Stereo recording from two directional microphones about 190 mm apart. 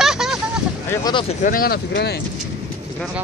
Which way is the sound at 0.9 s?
20° left (ahead or behind).